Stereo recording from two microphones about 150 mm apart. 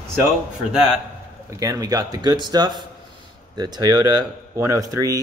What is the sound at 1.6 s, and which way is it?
Speech, 25° right (ahead or behind).